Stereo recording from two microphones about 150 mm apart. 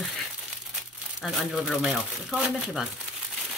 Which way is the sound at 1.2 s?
Centre (ahead or behind).